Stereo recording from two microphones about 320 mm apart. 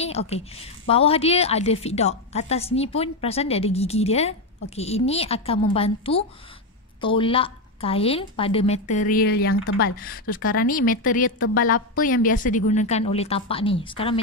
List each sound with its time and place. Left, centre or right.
0.0 s a woman's voice: centre